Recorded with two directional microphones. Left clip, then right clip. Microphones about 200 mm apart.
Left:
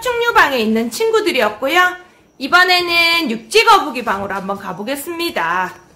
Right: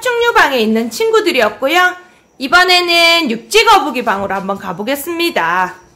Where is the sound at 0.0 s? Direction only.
10° right (ahead or behind).